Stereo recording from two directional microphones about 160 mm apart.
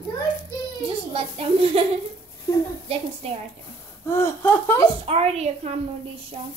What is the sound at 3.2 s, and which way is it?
Speech, 40° right (ahead or behind).